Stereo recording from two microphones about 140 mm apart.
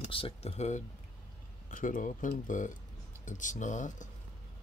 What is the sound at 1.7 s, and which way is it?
Speech, 70° left (ahead or behind).